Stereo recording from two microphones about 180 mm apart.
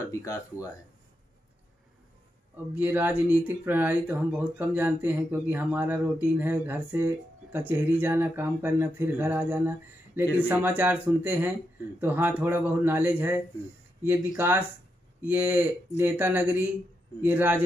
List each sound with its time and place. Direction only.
0.0 s speech: 20° left (ahead or behind)
2.5 s speech: 10° right (ahead or behind)